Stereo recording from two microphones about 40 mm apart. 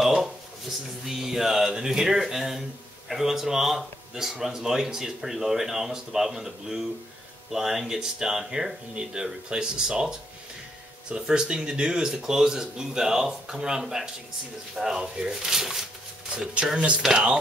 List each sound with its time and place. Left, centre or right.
0.0 s a sound: centre
1.0 s speech: centre
16.3 s speech: right